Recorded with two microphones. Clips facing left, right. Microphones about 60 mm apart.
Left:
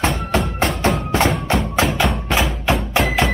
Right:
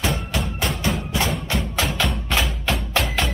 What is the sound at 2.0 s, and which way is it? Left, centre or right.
Music, centre.